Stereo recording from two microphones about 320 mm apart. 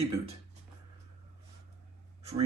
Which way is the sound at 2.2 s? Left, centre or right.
Centre.